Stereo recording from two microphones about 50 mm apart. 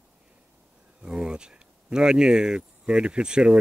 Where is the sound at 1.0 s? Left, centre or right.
Centre.